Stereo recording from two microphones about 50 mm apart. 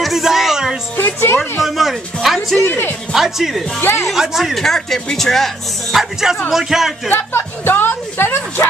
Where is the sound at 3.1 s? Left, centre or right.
Centre.